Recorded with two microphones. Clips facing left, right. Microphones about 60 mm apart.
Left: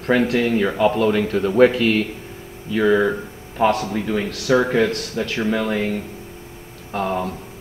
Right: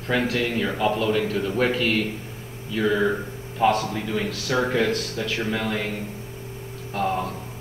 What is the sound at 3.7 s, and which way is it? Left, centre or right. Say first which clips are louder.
Speech: left 2 dB; centre.